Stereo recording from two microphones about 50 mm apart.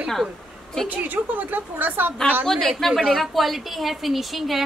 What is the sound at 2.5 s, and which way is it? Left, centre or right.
A woman's voice, centre.